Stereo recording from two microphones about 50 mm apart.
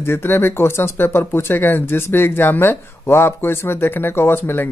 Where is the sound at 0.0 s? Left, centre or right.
Left.